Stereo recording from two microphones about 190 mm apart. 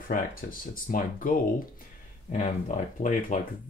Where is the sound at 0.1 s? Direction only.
50° left (ahead or behind).